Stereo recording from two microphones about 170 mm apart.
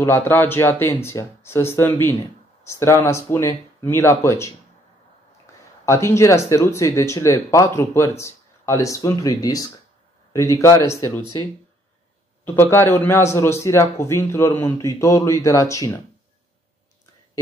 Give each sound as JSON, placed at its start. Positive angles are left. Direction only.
{"t": 0.0, "sound": "speech", "side_deg": 15}
{"t": 5.9, "sound": "speech", "side_deg": 15}
{"t": 12.5, "sound": "speech", "side_deg": 15}